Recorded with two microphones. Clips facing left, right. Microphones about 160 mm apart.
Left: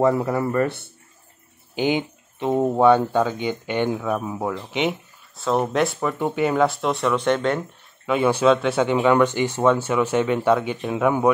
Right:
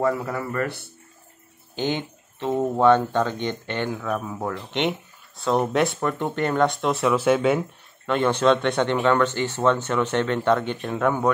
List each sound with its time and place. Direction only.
0.0 s speech: 25° left (ahead or behind)
1.8 s speech: 10° left (ahead or behind); by 7.6 s 5° right (ahead or behind)
8.1 s speech: 10° left (ahead or behind)